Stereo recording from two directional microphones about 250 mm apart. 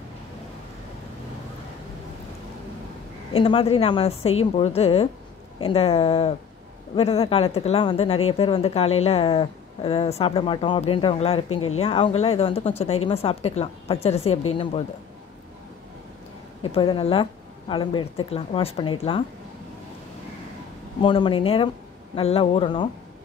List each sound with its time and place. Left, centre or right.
3.3 s a woman's voice: left
11.4 s speech: left
11.8 s a woman's voice: left
16.7 s a woman's voice: left
21.0 s a woman's voice: centre